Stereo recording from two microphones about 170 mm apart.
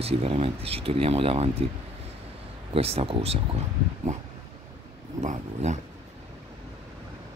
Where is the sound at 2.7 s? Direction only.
35° right (ahead or behind).